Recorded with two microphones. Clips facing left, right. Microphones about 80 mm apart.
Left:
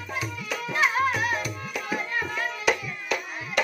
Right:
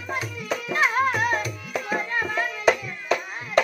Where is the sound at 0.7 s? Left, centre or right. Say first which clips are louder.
Right 2 dB; right.